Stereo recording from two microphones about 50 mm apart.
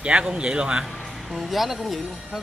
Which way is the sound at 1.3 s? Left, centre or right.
Centre.